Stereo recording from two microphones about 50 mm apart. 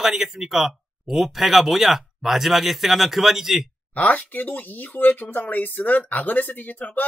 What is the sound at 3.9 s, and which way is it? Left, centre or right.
Speech, left.